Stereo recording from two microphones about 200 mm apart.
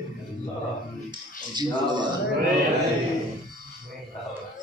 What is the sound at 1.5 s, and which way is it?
Speech, 20° right (ahead or behind).